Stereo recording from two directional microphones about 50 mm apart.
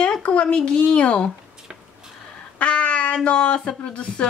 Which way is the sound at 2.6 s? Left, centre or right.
Left.